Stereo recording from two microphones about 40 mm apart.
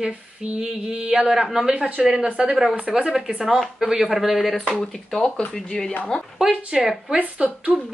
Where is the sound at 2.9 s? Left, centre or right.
Centre.